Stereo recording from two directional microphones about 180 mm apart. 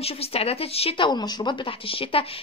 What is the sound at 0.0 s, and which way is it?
Speech, 35° left (ahead or behind).